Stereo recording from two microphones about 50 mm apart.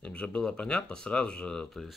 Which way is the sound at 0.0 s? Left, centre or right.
Left.